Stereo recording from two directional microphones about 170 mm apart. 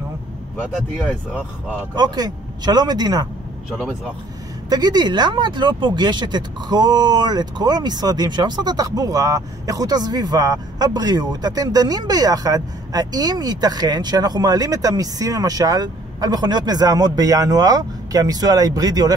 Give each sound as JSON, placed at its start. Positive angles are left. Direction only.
{"t": 0.6, "sound": "speech", "side_deg": -5}
{"t": 2.0, "sound": "speech", "side_deg": -25}
{"t": 4.6, "sound": "speech", "side_deg": -25}